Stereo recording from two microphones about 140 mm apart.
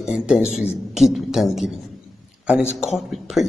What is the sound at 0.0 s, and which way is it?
A man's voice, 5° right (ahead or behind).